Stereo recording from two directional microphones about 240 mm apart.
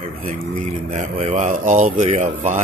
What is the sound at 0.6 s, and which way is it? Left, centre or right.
Speech, right.